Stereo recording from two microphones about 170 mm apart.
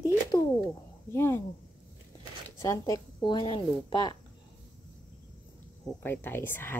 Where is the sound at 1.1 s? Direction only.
15° left (ahead or behind).